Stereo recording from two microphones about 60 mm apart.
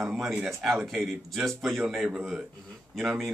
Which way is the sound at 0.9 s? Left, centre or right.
Centre.